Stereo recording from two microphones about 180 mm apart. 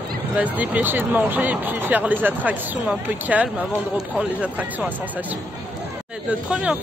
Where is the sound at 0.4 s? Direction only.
10° right (ahead or behind).